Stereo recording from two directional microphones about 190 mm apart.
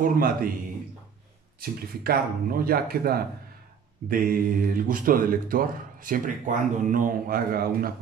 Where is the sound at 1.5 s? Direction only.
50° right (ahead or behind).